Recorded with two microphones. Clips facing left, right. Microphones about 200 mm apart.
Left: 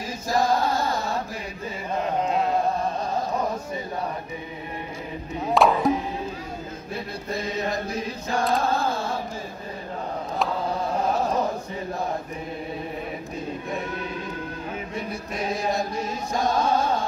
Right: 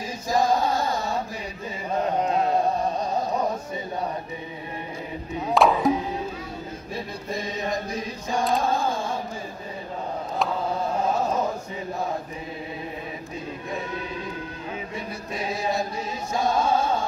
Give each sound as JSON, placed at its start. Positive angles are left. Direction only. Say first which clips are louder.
{"t": 0.3, "sound": "chant", "louder": "even", "side_deg": -15}
{"t": 5.5, "sound": "music", "louder": "even", "side_deg": 0}
{"t": 7.3, "sound": "chant", "louder": "left 1 dB", "side_deg": -15}
{"t": 16.3, "sound": "music", "louder": "even", "side_deg": -10}